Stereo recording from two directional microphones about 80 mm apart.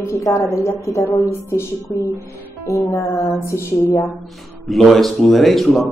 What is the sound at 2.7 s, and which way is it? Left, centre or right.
Music, left.